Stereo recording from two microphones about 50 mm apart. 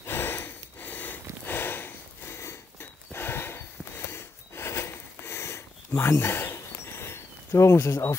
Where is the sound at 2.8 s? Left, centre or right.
Left.